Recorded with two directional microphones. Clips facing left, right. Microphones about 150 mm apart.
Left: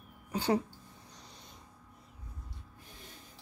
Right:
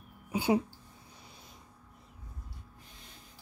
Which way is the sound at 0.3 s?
10° right (ahead or behind).